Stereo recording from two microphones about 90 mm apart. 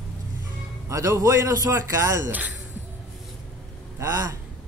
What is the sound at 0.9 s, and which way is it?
Speech, 35° right (ahead or behind).